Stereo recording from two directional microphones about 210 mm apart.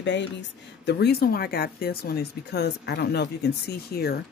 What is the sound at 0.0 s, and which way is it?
Speech, 60° left (ahead or behind).